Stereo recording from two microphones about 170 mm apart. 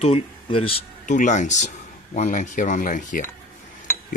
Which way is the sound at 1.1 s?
45° left (ahead or behind).